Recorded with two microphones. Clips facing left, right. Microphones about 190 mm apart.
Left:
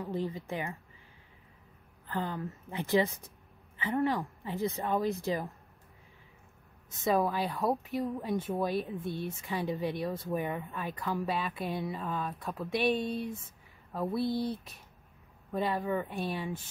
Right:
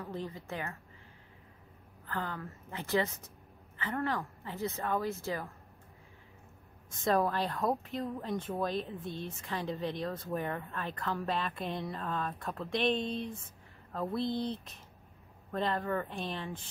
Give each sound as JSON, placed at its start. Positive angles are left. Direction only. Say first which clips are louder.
{"t": 0.0, "sound": "speech", "louder": "left 5 dB", "side_deg": 15}
{"t": 2.0, "sound": "speech", "louder": "left 3 dB", "side_deg": 15}
{"t": 7.1, "sound": "speech", "louder": "left 1 dB", "side_deg": 0}
{"t": 10.7, "sound": "speech", "louder": "left 2 dB", "side_deg": 5}
{"t": 14.2, "sound": "speech", "louder": "left 2 dB", "side_deg": -20}
{"t": 15.5, "sound": "speech", "louder": "left 2 dB", "side_deg": 5}